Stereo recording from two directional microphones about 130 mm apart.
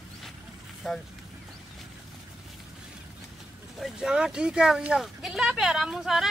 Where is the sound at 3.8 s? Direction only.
5° right (ahead or behind).